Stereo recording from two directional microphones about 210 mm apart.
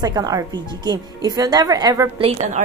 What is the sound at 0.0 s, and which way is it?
Speech, 20° right (ahead or behind).